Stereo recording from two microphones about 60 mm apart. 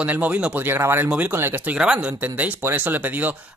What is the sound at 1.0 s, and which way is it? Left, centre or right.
Speech, right.